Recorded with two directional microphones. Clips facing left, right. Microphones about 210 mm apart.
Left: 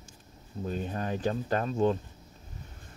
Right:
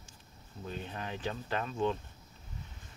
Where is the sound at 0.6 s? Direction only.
45° left (ahead or behind).